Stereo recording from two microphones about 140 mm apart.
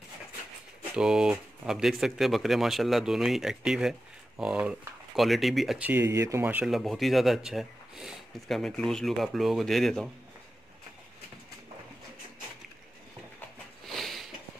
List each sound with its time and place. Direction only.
0.9 s speech: 5° right (ahead or behind)
5.9 s speech: 20° right (ahead or behind)
6.7 s speech: centre (ahead or behind)
13.8 s a sound: centre (ahead or behind)